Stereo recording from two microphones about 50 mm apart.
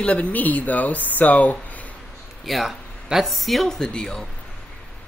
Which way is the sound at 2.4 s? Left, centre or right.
Centre.